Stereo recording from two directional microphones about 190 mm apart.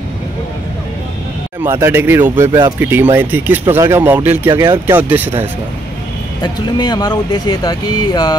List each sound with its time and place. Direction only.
1.6 s speech: 15° right (ahead or behind)
6.4 s speech: 20° left (ahead or behind)